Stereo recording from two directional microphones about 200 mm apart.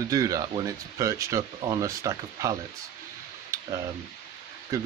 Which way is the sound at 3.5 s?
15° right (ahead or behind).